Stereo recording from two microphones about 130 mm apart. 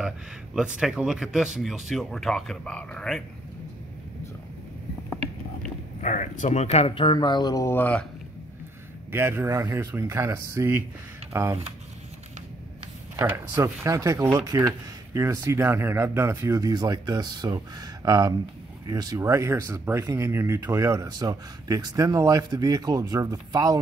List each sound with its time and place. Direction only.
0.6 s speech: 5° right (ahead or behind)
5.9 s speech: 70° left (ahead or behind); by 7.2 s 45° left (ahead or behind)
7.2 s speech: 35° left (ahead or behind); by 8.1 s 10° left (ahead or behind)
9.1 s speech: 20° right (ahead or behind)
13.1 s speech: 25° right (ahead or behind)